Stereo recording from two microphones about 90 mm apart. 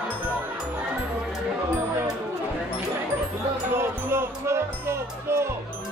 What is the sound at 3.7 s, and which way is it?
Music, 25° right (ahead or behind).